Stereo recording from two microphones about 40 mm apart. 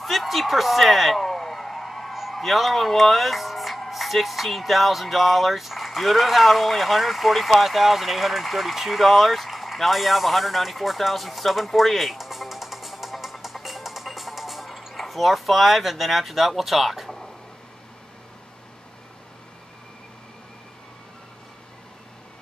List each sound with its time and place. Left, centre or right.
0.0 s speech: centre